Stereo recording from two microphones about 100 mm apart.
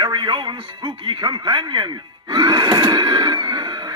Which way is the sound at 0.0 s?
50° right (ahead or behind).